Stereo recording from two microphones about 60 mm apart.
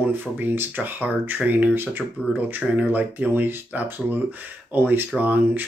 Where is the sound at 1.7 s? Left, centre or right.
Right.